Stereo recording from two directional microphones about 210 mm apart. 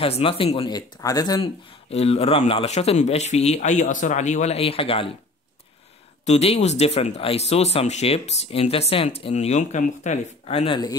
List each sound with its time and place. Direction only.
0.0 s speech: 25° left (ahead or behind)
6.2 s speech: 30° left (ahead or behind)